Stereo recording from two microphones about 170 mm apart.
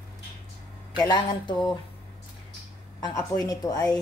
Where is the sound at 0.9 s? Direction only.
25° left (ahead or behind).